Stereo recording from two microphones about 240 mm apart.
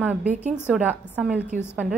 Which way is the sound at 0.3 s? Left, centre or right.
Right.